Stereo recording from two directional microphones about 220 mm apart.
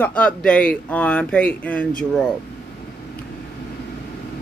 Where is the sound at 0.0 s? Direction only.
5° left (ahead or behind).